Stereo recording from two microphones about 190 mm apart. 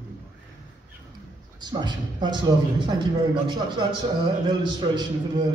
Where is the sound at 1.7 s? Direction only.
25° right (ahead or behind).